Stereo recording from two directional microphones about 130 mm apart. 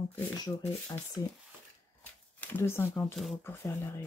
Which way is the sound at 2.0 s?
15° left (ahead or behind).